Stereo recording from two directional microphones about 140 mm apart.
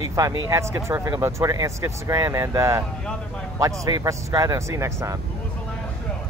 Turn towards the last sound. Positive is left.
turn(degrees=-20)  # may be behind; listen again after turning